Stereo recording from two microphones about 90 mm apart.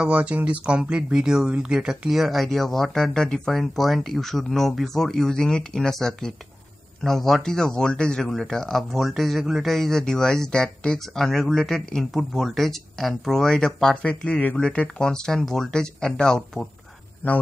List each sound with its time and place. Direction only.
0.0 s speech: 15° right (ahead or behind); by 16.6 s 10° left (ahead or behind)
17.2 s speech: 20° left (ahead or behind)